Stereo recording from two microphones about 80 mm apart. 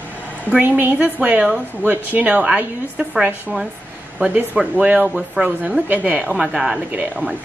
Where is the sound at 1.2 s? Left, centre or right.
Centre.